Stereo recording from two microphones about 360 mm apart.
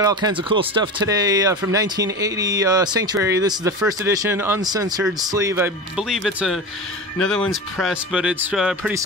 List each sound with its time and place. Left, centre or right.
0.0 s speech: centre